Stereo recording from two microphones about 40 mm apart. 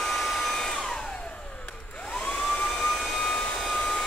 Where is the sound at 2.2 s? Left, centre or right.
Centre.